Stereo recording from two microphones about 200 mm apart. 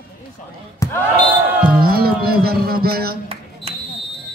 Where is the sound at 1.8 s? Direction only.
50° right (ahead or behind).